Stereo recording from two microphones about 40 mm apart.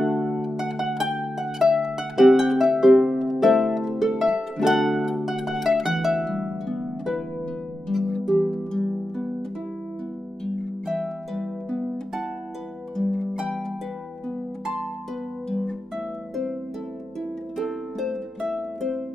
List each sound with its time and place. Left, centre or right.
0.0 s music: centre
1.1 s harp: centre
4.6 s music: centre
7.9 s harp: centre
11.0 s harp: centre
17.6 s harp: centre
18.5 s music: centre